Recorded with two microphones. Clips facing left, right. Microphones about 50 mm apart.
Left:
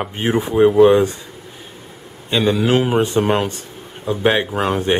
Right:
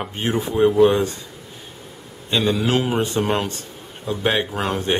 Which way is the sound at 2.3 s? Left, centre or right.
Centre.